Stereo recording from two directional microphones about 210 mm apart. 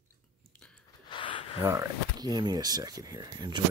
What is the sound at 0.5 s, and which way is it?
Biting, 5° left (ahead or behind).